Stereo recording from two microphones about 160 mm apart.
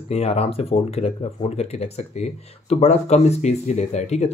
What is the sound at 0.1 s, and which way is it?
Speech, 40° left (ahead or behind).